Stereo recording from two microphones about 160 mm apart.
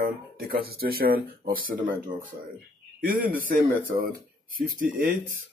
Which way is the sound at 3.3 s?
60° right (ahead or behind).